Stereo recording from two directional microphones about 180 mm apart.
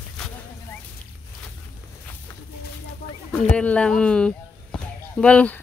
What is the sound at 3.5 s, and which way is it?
Speech, 5° left (ahead or behind).